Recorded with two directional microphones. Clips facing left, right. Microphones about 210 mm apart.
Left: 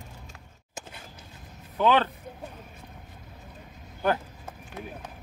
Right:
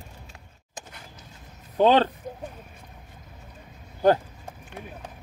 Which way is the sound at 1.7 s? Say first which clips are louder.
Right 4 dB; 35° right (ahead or behind).